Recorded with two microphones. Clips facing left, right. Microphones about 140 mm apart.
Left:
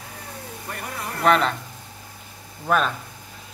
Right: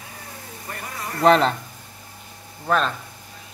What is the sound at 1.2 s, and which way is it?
Speech, 35° right (ahead or behind).